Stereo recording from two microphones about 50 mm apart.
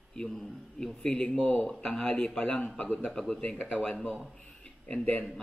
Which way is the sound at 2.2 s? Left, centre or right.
Centre.